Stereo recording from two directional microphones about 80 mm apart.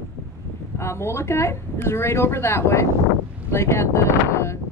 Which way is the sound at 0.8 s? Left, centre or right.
Left.